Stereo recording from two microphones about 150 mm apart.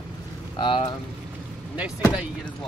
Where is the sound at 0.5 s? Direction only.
35° left (ahead or behind).